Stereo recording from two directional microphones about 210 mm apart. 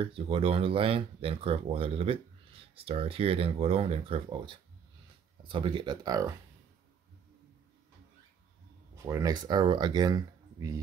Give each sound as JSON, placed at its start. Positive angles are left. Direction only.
{"t": 0.0, "sound": "speech", "side_deg": -25}
{"t": 8.9, "sound": "speech", "side_deg": -15}